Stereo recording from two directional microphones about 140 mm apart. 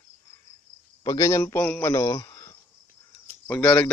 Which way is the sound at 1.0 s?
25° left (ahead or behind).